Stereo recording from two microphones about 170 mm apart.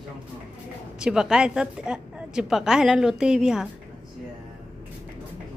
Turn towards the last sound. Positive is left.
turn(degrees=-5)  # may be behind; listen again after turning